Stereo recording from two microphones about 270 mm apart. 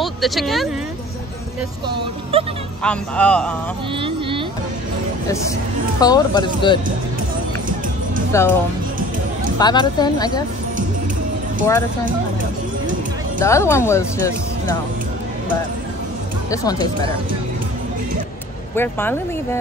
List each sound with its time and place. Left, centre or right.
0.0 s speech: centre
2.8 s speech: centre
3.9 s a sound: centre
5.9 s speech: centre
8.3 s speech: centre
9.6 s speech: centre
13.4 s speech: centre
16.4 s speech: centre
18.8 s speech: centre